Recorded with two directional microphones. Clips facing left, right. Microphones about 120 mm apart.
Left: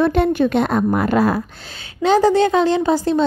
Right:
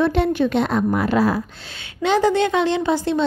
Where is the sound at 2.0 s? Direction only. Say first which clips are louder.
Left 3 dB; 40° left (ahead or behind).